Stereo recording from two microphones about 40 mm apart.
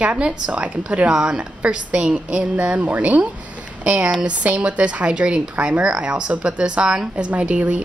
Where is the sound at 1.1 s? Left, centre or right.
Right.